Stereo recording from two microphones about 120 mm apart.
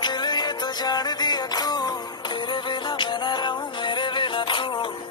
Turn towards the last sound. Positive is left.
turn(degrees=40)  # may be behind; listen again after turning